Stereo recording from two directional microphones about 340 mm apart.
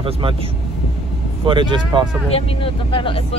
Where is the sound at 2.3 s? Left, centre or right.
Centre.